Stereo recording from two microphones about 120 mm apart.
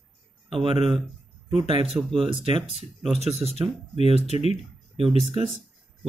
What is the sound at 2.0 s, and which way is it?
Speech, 15° right (ahead or behind).